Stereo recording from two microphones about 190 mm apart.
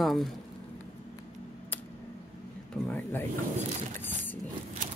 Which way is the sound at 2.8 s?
10° left (ahead or behind).